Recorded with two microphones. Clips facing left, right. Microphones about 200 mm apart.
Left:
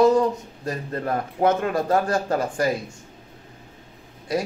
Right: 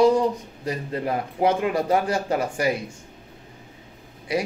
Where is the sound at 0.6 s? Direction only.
15° right (ahead or behind).